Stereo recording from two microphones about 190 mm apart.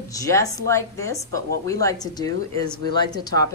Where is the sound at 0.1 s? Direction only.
15° left (ahead or behind).